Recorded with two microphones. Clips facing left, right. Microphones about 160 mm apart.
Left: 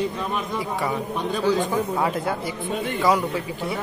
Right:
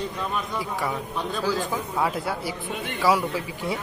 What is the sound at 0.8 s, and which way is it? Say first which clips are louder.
A man's voice: left 3 dB; centre (ahead or behind).